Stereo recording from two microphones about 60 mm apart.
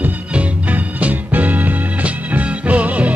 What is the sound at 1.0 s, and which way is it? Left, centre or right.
Music, right.